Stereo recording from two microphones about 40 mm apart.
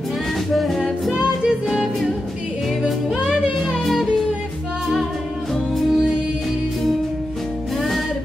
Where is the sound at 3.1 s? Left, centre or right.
Centre.